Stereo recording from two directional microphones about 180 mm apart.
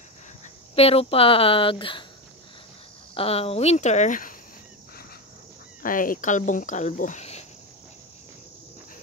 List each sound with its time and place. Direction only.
0.7 s speech: 35° left (ahead or behind)
3.2 s speech: 30° left (ahead or behind); by 4.4 s 50° left (ahead or behind)
5.8 s speech: 50° left (ahead or behind)